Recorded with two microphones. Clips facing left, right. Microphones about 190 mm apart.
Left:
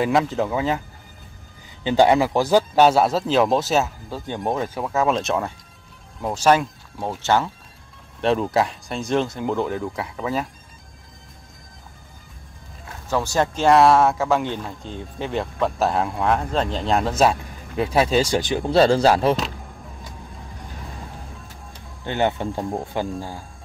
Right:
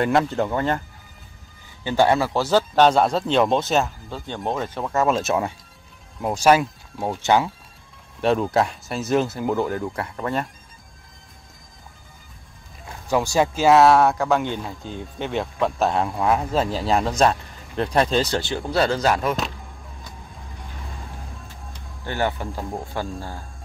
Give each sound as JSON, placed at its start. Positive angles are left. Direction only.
{"t": 0.0, "sound": "speech", "side_deg": 0}
{"t": 1.8, "sound": "speech", "side_deg": 15}
{"t": 8.2, "sound": "speech", "side_deg": 0}
{"t": 13.1, "sound": "speech", "side_deg": -10}
{"t": 22.0, "sound": "speech", "side_deg": 20}